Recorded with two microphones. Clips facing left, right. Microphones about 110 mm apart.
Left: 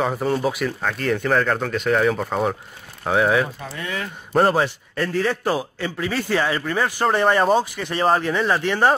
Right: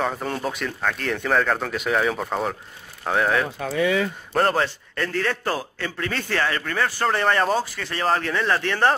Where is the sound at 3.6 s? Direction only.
90° right.